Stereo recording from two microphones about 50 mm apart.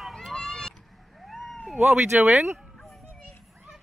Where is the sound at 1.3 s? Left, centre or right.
Centre.